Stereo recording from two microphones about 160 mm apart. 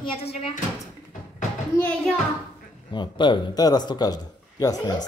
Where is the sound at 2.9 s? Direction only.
30° left (ahead or behind).